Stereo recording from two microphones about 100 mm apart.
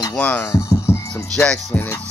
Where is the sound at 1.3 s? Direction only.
10° left (ahead or behind).